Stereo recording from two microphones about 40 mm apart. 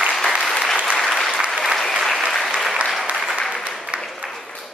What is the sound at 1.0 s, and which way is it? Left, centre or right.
Applause, centre.